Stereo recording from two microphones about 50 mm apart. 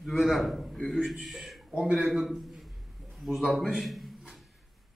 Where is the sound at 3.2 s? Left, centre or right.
Centre.